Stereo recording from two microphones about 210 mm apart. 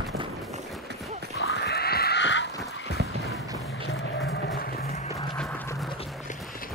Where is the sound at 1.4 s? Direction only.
60° left (ahead or behind).